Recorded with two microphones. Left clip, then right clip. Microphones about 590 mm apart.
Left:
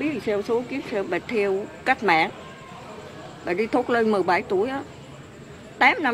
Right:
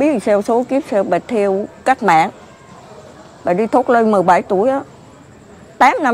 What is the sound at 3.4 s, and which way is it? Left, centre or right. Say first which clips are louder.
Speech: right 10 dB; right.